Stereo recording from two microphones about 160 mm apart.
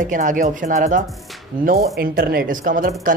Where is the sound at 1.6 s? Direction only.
65° right (ahead or behind).